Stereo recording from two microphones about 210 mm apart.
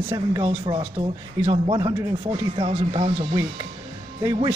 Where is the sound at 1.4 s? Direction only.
25° right (ahead or behind).